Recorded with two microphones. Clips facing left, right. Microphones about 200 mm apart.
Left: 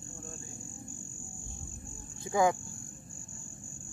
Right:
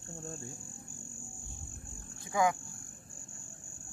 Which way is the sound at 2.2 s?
30° left (ahead or behind).